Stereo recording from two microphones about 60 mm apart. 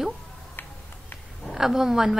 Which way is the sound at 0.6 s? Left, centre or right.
Left.